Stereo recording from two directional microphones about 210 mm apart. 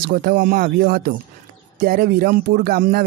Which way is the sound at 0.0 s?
45° right (ahead or behind).